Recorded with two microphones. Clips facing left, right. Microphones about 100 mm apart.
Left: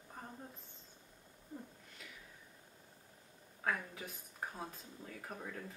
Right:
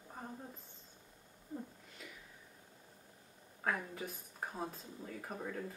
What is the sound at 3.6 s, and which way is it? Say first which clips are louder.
Speech: right 1 dB; 5° right (ahead or behind).